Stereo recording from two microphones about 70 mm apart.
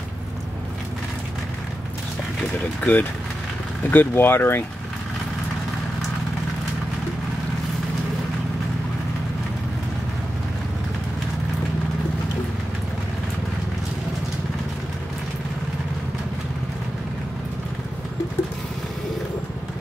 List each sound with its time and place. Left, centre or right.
2.8 s speech: centre
3.9 s speech: left